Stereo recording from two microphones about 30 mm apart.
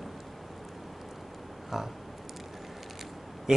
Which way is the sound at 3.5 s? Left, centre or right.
Centre.